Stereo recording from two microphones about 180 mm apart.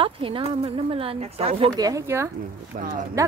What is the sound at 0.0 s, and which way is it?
Speech, 30° right (ahead or behind).